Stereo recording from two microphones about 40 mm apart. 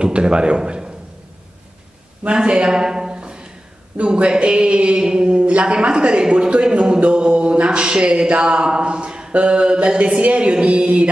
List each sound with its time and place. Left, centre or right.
0.0 s a man's voice: right
2.2 s speech: right